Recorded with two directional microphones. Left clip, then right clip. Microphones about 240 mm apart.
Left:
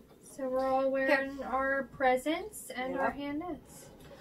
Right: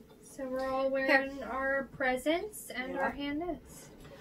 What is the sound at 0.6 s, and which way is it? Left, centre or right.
Speech, centre.